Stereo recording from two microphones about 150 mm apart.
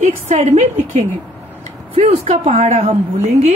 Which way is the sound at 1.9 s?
40° right (ahead or behind).